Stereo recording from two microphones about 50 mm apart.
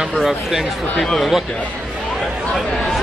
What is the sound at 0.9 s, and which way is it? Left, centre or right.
Speech, centre.